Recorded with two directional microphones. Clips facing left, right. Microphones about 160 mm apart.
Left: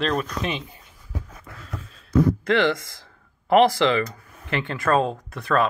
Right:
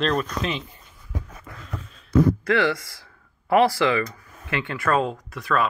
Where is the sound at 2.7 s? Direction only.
20° left (ahead or behind).